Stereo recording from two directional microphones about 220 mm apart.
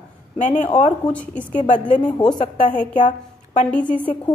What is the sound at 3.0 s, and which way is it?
Speech, 30° left (ahead or behind).